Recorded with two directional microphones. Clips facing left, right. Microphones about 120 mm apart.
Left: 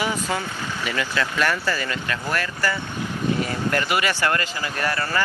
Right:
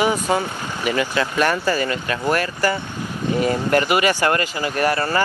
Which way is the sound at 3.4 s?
20° right (ahead or behind).